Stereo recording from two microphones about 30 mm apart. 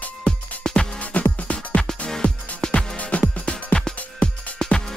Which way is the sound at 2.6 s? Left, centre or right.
Left.